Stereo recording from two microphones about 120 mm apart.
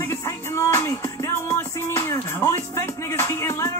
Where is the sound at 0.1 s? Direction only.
20° left (ahead or behind).